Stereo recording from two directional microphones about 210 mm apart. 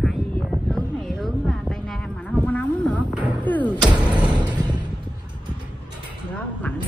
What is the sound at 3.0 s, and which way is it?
Music, 5° right (ahead or behind).